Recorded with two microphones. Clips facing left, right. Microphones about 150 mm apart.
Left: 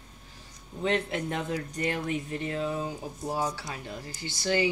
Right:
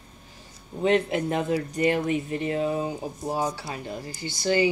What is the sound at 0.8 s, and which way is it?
Speech, 10° right (ahead or behind).